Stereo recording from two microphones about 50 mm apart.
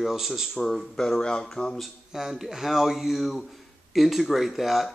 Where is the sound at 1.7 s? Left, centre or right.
Centre.